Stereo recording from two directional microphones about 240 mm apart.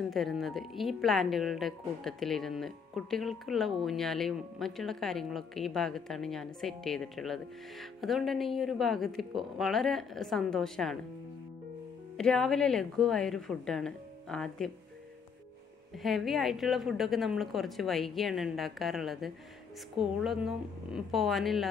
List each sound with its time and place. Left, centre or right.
0.1 s a woman's voice: centre
12.2 s a woman's voice: centre
16.0 s a woman's voice: centre